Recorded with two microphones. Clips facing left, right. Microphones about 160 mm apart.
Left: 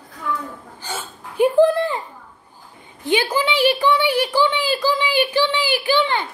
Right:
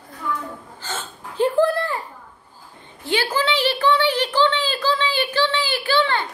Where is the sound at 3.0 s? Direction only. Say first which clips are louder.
Left 3 dB; 15° left (ahead or behind).